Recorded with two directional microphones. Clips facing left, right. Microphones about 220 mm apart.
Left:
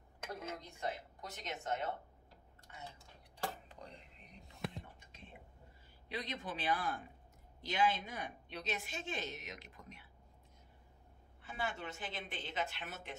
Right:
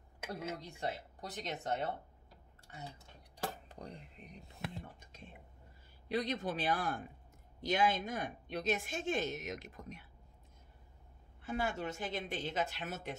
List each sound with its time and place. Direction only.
0.6 s a woman's voice: 30° right (ahead or behind)
3.6 s a sound: 45° right (ahead or behind)
4.6 s whispering: centre (ahead or behind)
6.0 s speech: 40° right (ahead or behind)
11.4 s a woman's voice: 40° right (ahead or behind)